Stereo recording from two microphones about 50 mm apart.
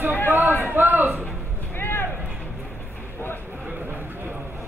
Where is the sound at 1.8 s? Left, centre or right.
Left.